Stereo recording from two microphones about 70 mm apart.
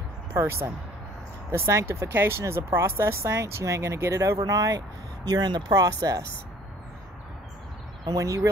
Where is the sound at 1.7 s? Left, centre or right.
Right.